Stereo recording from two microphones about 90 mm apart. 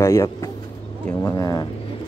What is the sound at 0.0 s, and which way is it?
Speech, 35° left (ahead or behind).